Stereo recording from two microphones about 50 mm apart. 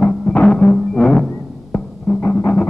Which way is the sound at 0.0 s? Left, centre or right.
Centre.